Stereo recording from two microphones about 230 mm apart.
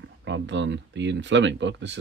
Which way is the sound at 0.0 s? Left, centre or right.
Right.